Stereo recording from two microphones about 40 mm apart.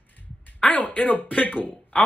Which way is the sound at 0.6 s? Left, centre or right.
Left.